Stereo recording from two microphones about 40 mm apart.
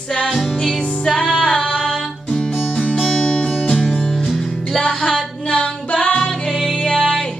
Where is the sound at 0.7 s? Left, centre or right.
Centre.